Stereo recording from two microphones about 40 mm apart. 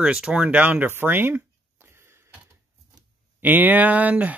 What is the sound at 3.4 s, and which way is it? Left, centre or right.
Speech, right.